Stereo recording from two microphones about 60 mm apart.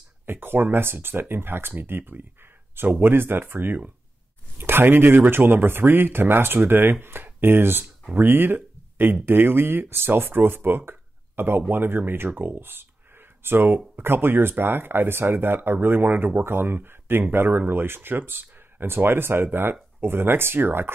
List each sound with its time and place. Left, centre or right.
0.3 s speech: right
10.9 s a sound: right
11.7 s speech: right